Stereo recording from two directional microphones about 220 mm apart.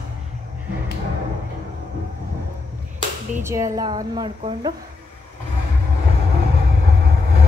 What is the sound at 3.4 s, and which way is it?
A woman's voice, 15° right (ahead or behind).